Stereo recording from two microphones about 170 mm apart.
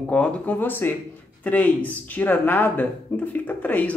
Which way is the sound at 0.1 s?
5° left (ahead or behind).